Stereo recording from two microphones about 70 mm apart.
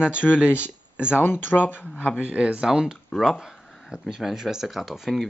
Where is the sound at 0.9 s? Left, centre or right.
Centre.